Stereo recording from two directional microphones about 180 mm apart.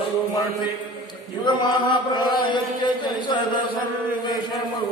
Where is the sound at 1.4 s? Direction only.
25° left (ahead or behind).